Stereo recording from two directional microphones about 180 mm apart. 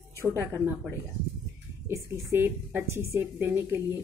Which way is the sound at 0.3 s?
15° right (ahead or behind).